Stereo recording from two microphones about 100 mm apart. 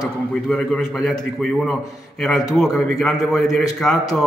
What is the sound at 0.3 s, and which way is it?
A man's voice, 10° left (ahead or behind).